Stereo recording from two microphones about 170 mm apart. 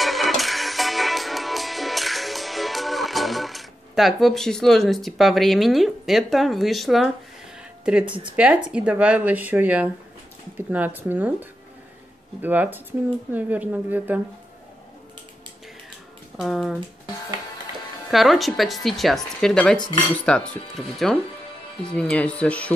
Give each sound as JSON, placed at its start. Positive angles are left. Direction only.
{"t": 0.0, "sound": "music", "side_deg": 0}
{"t": 8.0, "sound": "speech", "side_deg": -30}
{"t": 8.7, "sound": "speech", "side_deg": -5}
{"t": 16.3, "sound": "speech", "side_deg": 0}
{"t": 18.1, "sound": "speech", "side_deg": 0}
{"t": 21.9, "sound": "speech", "side_deg": 5}